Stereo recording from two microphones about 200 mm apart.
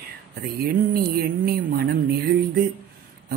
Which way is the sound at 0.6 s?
50° right (ahead or behind).